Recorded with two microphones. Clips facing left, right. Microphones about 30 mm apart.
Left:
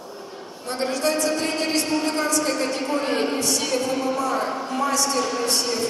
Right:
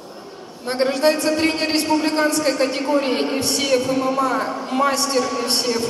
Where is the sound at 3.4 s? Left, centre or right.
Right.